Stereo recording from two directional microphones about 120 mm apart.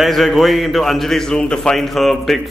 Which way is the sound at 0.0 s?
Centre (ahead or behind).